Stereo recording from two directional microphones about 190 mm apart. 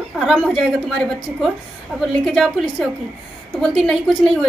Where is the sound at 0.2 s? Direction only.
Centre (ahead or behind).